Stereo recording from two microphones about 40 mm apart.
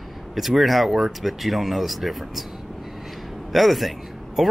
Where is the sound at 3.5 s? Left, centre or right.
Centre.